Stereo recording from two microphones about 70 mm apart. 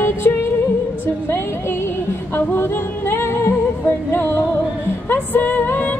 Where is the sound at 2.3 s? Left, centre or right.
Left.